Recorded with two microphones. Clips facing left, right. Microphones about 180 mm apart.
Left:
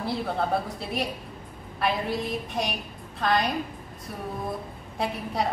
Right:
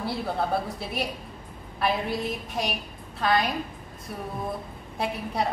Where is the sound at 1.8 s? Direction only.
Centre (ahead or behind).